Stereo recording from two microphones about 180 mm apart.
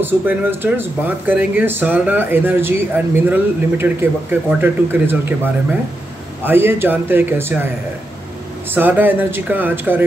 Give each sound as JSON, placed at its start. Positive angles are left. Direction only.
{"t": 0.0, "sound": "speech", "side_deg": -10}
{"t": 8.7, "sound": "speech", "side_deg": -10}